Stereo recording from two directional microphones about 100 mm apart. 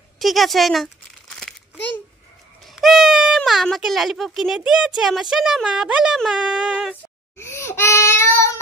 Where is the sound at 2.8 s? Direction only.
Centre (ahead or behind).